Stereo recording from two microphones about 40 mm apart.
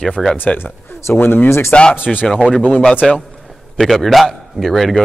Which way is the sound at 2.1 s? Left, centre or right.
Centre.